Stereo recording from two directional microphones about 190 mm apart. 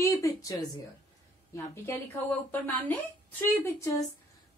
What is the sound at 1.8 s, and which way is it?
A woman's voice, 10° left (ahead or behind).